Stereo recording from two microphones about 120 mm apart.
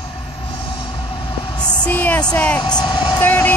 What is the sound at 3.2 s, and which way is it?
Vehicle, 15° left (ahead or behind).